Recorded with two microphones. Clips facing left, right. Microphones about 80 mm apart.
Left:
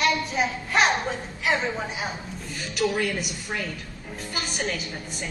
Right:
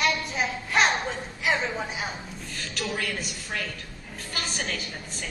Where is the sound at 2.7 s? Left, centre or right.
Centre.